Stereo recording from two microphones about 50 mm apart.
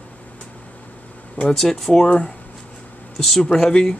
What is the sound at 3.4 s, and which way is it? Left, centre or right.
Speech, centre.